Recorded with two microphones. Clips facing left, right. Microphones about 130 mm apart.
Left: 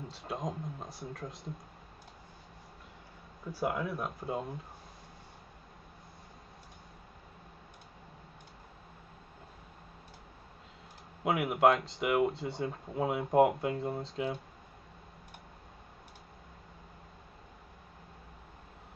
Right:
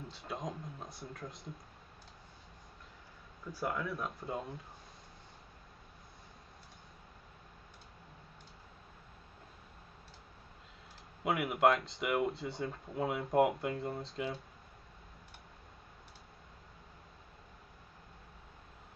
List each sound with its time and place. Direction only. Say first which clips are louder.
0.1 s speech: left 4 dB; centre (ahead or behind)
3.7 s speech: left 3 dB; 25° left (ahead or behind)
4.2 s speech: left 4 dB; centre (ahead or behind)
11.2 s speech: left 3 dB; centre (ahead or behind)